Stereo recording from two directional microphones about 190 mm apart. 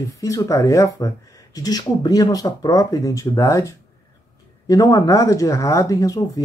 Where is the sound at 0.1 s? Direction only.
15° left (ahead or behind).